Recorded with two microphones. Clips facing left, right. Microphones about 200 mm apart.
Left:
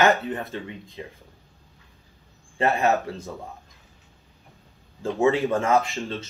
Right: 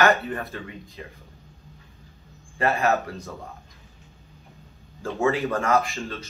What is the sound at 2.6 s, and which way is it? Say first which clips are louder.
Speech: left 1 dB; 30° left (ahead or behind).